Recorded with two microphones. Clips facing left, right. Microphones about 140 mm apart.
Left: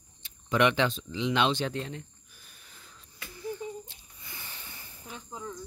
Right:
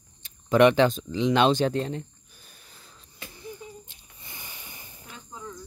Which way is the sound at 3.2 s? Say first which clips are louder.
Left 4 dB; 25° right (ahead or behind).